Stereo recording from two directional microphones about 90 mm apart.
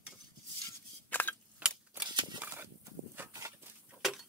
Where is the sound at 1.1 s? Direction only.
20° left (ahead or behind).